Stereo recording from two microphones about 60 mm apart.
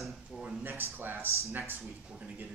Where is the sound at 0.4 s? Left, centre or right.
Right.